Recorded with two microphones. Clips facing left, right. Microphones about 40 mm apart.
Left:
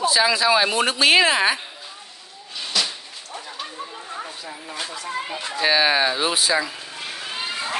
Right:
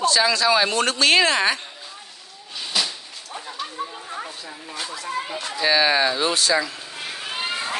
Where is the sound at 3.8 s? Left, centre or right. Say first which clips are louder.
Right 1 dB; centre.